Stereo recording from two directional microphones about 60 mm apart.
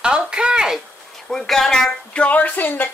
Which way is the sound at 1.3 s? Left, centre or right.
Centre.